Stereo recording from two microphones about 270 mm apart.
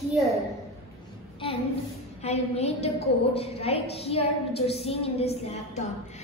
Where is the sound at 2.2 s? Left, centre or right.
Left.